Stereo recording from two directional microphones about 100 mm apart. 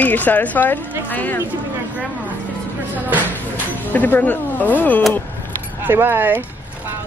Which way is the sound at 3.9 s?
15° left (ahead or behind).